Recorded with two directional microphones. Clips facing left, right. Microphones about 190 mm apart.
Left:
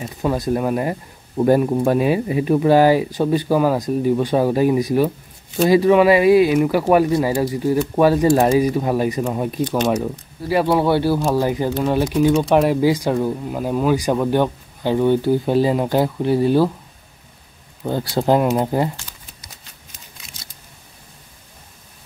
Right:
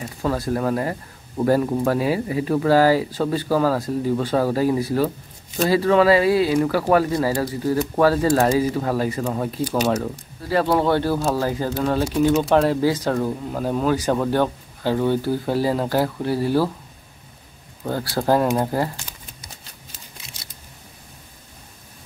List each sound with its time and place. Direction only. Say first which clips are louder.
0.0 s speech: left 3 dB; 20° left (ahead or behind)
17.8 s speech: left 3 dB; 20° left (ahead or behind)